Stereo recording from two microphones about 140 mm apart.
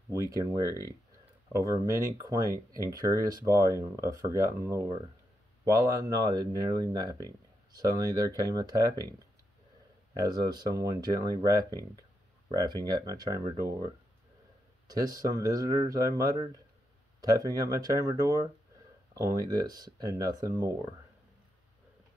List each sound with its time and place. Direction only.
0.1 s speech: 25° right (ahead or behind)
10.2 s speech: 30° right (ahead or behind)
14.9 s speech: 30° right (ahead or behind)
17.5 s speech: 25° right (ahead or behind)